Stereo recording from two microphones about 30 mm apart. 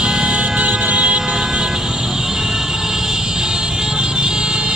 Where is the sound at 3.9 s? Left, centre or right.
Right.